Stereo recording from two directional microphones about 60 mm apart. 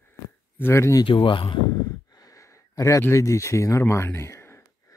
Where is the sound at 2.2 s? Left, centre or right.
Left.